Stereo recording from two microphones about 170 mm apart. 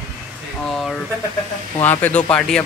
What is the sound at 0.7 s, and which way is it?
Speech, centre (ahead or behind).